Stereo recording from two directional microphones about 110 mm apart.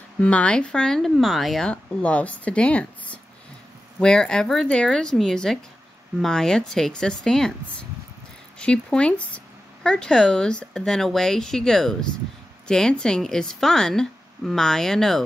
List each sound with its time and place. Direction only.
0.2 s speech: 10° left (ahead or behind)